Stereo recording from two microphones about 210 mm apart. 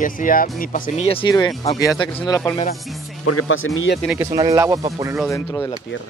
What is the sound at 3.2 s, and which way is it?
Speech, 80° left.